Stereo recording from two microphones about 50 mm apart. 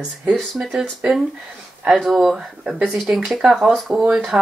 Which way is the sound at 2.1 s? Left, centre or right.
Centre.